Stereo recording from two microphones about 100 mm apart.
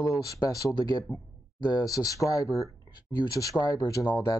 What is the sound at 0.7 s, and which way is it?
Speech, 45° left (ahead or behind).